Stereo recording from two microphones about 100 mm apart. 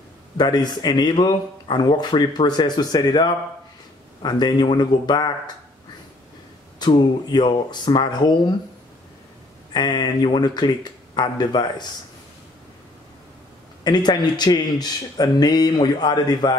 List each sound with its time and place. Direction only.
0.4 s a man's voice: 45° left (ahead or behind)
6.8 s a man's voice: 45° left (ahead or behind)
9.8 s a man's voice: 45° left (ahead or behind)
13.8 s a man's voice: 45° left (ahead or behind)